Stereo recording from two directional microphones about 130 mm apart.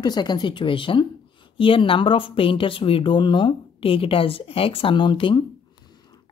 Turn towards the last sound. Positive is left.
turn(degrees=40)  # may be behind; listen again after turning